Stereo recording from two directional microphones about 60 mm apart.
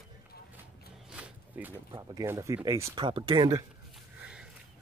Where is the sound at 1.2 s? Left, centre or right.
Right.